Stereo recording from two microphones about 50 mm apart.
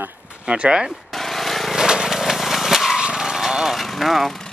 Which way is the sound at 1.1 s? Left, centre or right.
Centre.